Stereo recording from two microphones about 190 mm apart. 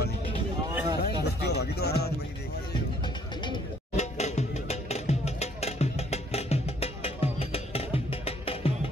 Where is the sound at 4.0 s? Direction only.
35° left (ahead or behind).